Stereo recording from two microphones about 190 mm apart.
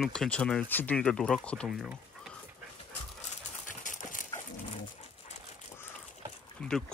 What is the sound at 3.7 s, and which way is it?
Clip-clop, 45° left (ahead or behind).